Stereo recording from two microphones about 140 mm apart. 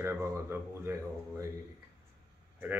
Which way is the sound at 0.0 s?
20° right (ahead or behind).